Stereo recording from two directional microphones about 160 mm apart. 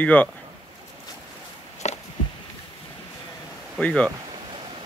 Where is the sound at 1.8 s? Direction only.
45° left (ahead or behind).